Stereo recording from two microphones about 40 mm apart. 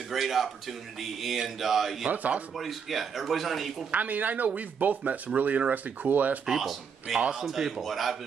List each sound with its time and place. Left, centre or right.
0.1 s speech: centre
2.0 s speech: right
2.5 s speech: centre
3.9 s speech: right
6.4 s speech: centre
7.2 s a man's voice: right
7.4 s speech: centre